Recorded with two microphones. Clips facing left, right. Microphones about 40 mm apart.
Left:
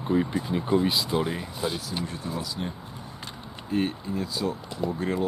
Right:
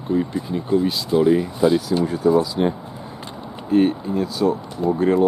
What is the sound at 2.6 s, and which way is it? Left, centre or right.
Speech, right.